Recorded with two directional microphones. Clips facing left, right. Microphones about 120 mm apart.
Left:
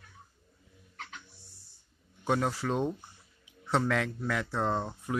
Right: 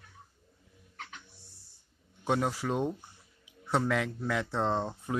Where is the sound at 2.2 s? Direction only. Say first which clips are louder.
Even; 15° right (ahead or behind).